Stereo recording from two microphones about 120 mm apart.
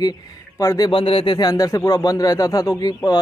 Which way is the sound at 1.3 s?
35° left (ahead or behind).